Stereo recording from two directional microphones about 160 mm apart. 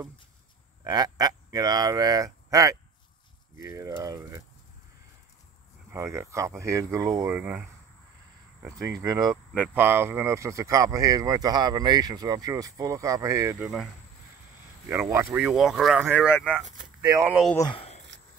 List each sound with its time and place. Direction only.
0.8 s speech: 25° right (ahead or behind)
5.9 s speech: 20° right (ahead or behind)
8.6 s speech: 20° right (ahead or behind)
9.5 s speech: 10° right (ahead or behind)
14.9 s speech: 15° right (ahead or behind)
17.7 s a sound: 40° left (ahead or behind)